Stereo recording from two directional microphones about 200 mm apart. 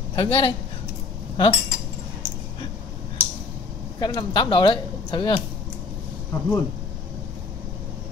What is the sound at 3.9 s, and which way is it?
Speech, 20° left (ahead or behind).